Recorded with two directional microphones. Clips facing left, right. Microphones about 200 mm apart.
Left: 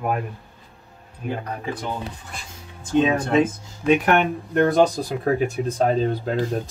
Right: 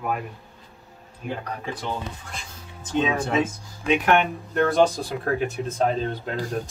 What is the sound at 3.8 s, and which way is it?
Speech, 45° left (ahead or behind).